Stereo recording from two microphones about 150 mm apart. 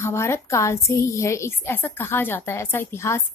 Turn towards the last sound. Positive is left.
turn(degrees=15)  # may be behind; listen again after turning